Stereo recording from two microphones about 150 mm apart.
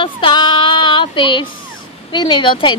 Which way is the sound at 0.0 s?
30° left (ahead or behind).